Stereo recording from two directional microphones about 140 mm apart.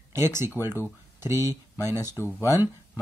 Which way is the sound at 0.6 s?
15° right (ahead or behind).